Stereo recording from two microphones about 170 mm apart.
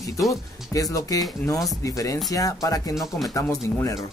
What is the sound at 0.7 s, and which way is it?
Speech, 20° left (ahead or behind).